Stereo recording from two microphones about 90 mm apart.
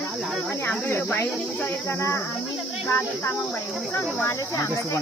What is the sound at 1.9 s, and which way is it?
Speech, 35° left (ahead or behind).